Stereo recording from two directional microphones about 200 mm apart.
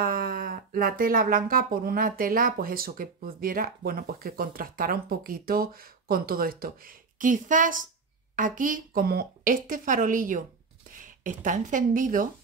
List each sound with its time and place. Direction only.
0.0 s a woman's voice: 45° right (ahead or behind)